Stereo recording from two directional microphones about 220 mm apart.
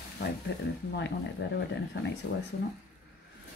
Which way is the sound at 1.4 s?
50° left (ahead or behind).